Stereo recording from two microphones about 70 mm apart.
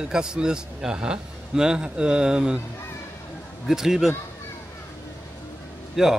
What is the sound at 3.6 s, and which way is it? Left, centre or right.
Speech, centre.